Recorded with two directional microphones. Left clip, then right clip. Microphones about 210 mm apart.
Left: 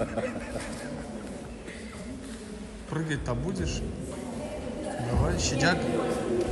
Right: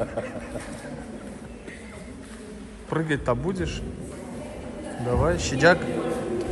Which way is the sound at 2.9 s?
5° left (ahead or behind).